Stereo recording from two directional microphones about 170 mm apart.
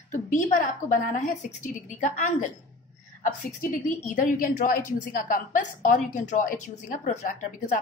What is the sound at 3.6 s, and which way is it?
A woman's voice, 50° left (ahead or behind).